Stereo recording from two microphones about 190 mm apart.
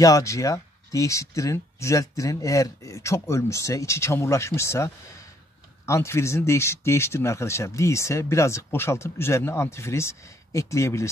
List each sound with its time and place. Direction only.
0.0 s speech: 15° left (ahead or behind)